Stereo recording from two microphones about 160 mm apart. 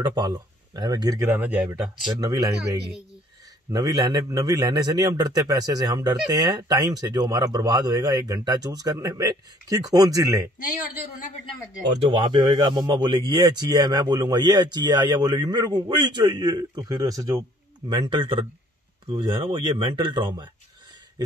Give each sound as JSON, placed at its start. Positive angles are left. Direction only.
{"t": 0.0, "sound": "speech", "side_deg": -25}
{"t": 1.3, "sound": "speech", "side_deg": -10}
{"t": 2.1, "sound": "speech", "side_deg": -25}
{"t": 3.7, "sound": "speech", "side_deg": -25}
{"t": 12.0, "sound": "speech", "side_deg": -35}